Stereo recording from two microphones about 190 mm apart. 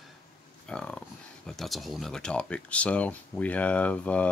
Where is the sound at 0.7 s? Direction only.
5° left (ahead or behind).